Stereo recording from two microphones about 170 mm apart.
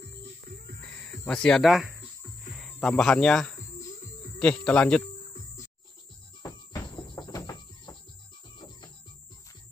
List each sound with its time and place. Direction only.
0.8 s cricket: 5° left (ahead or behind)
4.4 s speech: 5° left (ahead or behind)
5.1 s cricket: 40° left (ahead or behind)
6.4 s cricket: 25° left (ahead or behind)